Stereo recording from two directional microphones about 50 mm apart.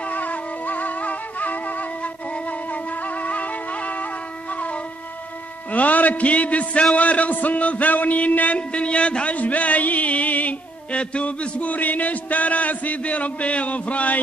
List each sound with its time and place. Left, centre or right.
0.1 s music: left
5.7 s a man's voice: left